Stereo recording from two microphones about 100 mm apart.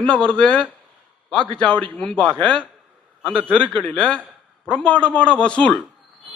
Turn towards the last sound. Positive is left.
turn(degrees=10)  # may be behind; listen again after turning